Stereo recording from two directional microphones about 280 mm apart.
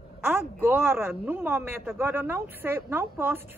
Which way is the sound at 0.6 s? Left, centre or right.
Centre.